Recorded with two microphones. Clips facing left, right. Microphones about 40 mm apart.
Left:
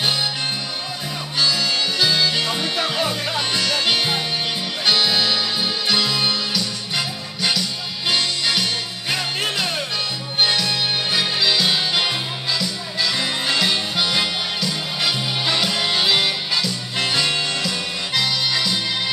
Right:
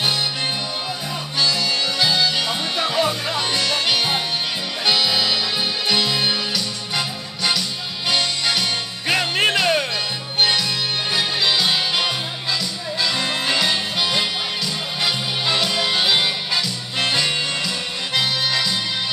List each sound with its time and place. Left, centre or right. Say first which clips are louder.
1.4 s music: even; centre
8.1 s music: even; centre
9.1 s music: right 5 dB; right
10.4 s music: even; centre